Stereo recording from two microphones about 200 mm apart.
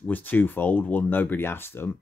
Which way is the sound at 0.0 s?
10° left (ahead or behind).